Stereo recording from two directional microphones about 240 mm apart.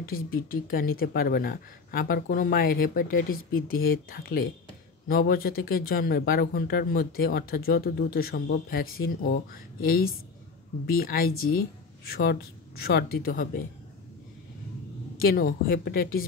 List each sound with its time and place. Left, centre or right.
0.0 s speech: left
15.1 s speech: left